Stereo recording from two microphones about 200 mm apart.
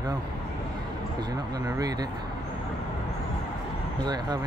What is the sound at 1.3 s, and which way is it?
Speech, 15° right (ahead or behind).